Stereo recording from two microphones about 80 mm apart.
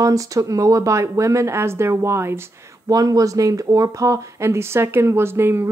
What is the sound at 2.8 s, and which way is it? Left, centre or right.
Speech, right.